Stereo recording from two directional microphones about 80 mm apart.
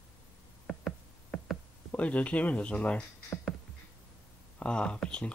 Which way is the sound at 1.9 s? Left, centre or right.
Centre.